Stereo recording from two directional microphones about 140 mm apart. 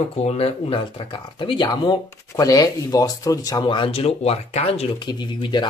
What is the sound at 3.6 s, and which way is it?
Speech, 40° left (ahead or behind).